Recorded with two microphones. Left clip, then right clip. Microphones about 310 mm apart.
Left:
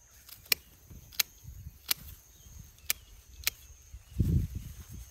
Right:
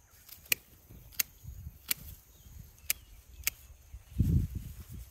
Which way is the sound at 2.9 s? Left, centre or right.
Centre.